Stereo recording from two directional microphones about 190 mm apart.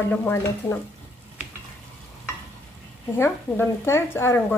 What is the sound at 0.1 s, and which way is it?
Speech, 10° left (ahead or behind).